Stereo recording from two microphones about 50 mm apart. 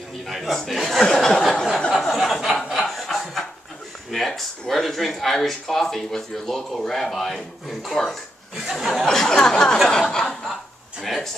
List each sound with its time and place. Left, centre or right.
0.2 s speech: centre
1.9 s a sound: centre
4.1 s speech: centre
9.0 s speech: centre
11.0 s speech: centre